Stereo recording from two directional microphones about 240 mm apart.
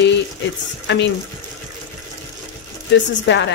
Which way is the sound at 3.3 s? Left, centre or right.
Left.